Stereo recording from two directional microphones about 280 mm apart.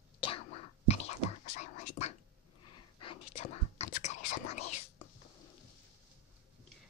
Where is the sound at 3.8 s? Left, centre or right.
Left.